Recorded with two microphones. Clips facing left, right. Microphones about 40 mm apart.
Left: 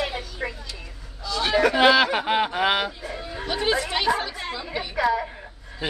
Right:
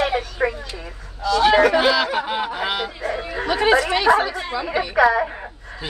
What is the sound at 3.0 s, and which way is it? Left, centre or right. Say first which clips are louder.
A woman's voice: right 8 dB; right.